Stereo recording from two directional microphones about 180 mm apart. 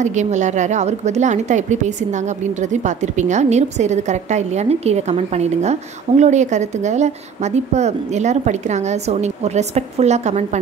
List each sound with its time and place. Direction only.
0.0 s a woman's voice: 40° right (ahead or behind)